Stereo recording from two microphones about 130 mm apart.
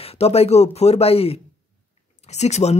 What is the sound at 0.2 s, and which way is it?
Speech, 50° left (ahead or behind).